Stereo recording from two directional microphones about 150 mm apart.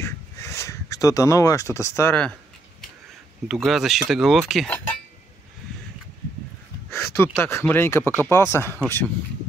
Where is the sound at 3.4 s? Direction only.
Centre (ahead or behind).